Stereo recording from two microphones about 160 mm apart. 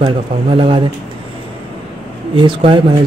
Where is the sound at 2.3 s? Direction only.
30° right (ahead or behind).